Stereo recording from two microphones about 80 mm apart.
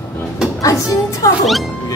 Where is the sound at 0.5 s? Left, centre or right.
Left.